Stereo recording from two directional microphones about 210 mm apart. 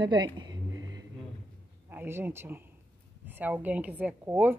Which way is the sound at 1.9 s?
10° right (ahead or behind).